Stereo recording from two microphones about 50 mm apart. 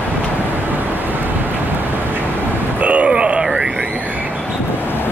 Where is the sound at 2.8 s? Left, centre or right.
Right.